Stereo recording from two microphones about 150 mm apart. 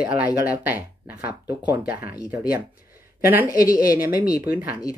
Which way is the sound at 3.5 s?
25° left (ahead or behind).